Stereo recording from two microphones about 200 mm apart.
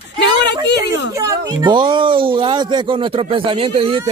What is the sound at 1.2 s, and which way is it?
Speech, 20° right (ahead or behind).